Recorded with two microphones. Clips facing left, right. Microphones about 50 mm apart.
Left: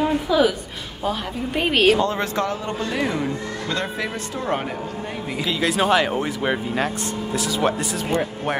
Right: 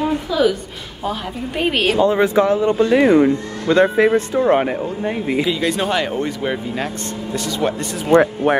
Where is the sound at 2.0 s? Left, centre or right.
Centre.